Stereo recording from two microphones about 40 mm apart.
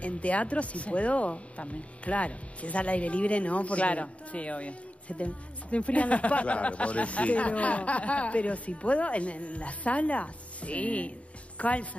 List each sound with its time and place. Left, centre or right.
0.0 s speech: left